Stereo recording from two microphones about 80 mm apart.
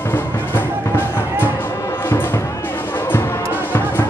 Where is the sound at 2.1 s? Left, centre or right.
Left.